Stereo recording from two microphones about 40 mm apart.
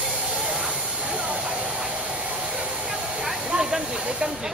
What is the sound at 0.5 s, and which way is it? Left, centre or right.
Train, right.